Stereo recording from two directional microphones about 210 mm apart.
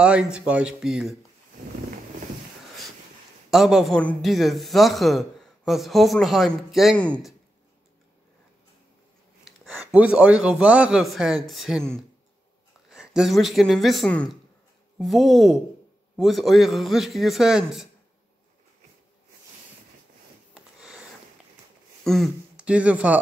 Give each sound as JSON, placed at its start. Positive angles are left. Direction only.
{"t": 0.0, "sound": "a man's voice", "side_deg": -5}
{"t": 3.4, "sound": "a man's voice", "side_deg": 0}
{"t": 9.4, "sound": "a man's voice", "side_deg": -5}
{"t": 20.5, "sound": "a sound", "side_deg": 0}
{"t": 22.0, "sound": "speech", "side_deg": 0}